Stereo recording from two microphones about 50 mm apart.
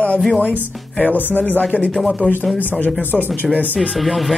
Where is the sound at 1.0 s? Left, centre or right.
Left.